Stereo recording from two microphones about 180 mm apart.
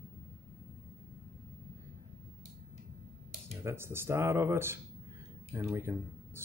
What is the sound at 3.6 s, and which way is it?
Speech, 15° right (ahead or behind).